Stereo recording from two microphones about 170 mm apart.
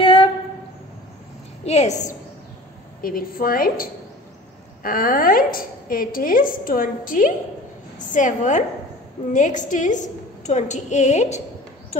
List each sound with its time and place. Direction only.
0.0 s a sound: 30° left (ahead or behind)
1.6 s a woman's voice: 40° left (ahead or behind)
3.0 s a woman's voice: 55° left (ahead or behind)